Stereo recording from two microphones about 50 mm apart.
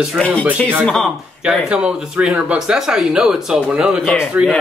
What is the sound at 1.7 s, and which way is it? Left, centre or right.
Speech, right.